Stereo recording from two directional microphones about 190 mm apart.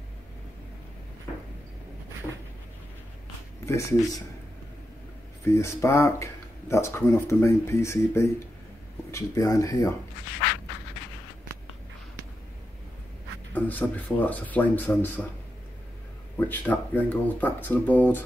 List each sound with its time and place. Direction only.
3.6 s speech: 15° left (ahead or behind)
5.5 s speech: 15° left (ahead or behind)
13.5 s speech: 10° left (ahead or behind)
16.3 s speech: 10° left (ahead or behind)